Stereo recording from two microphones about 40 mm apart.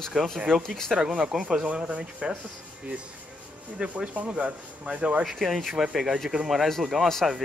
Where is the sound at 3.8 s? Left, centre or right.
Right.